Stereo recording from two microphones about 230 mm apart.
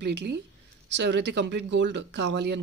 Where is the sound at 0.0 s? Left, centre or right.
Right.